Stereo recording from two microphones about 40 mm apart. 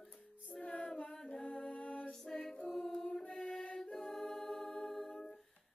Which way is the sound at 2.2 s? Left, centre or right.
Centre.